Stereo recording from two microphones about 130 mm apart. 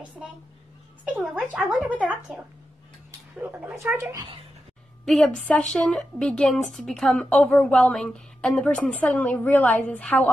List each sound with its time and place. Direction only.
1.1 s speech: 10° right (ahead or behind)
5.0 s a woman's voice: 5° left (ahead or behind)